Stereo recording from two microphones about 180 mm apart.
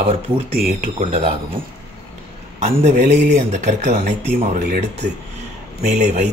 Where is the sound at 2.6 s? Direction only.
40° right (ahead or behind).